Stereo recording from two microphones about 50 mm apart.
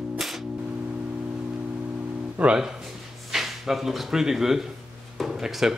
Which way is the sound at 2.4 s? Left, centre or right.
Right.